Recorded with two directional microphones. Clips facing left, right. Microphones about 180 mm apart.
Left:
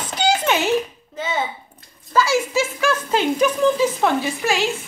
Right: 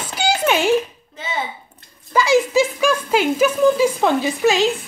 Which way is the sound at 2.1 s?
15° right (ahead or behind).